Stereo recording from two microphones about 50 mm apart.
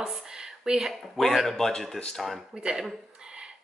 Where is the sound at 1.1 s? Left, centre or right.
Centre.